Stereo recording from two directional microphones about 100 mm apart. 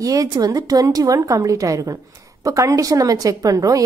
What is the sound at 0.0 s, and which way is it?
A woman's voice, 35° right (ahead or behind).